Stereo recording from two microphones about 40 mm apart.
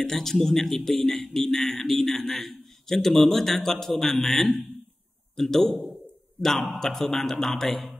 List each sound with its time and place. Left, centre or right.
0.0 s a man's voice: centre